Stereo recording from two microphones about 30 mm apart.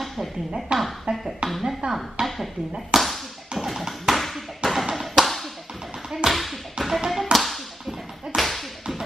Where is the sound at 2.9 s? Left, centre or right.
Centre.